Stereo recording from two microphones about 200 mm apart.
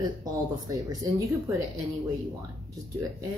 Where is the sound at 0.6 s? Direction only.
15° right (ahead or behind).